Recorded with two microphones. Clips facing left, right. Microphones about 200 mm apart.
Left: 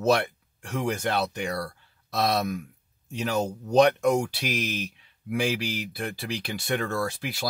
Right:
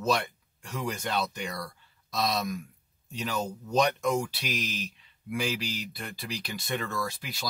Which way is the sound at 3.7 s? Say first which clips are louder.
Left 6 dB; 65° left (ahead or behind).